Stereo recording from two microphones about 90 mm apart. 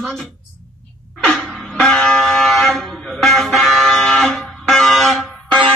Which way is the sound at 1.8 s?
5° left (ahead or behind).